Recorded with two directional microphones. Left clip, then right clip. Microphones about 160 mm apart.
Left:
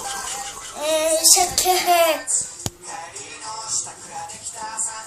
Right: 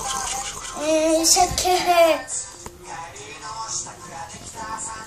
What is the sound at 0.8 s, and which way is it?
Female singing, 15° left (ahead or behind).